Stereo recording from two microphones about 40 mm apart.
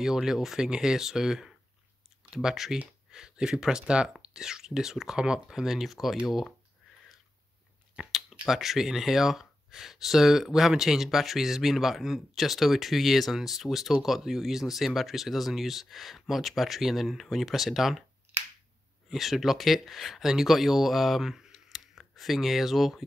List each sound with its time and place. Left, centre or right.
0.0 s speech: centre
8.5 s speech: centre
19.0 s speech: centre
21.7 s speech: centre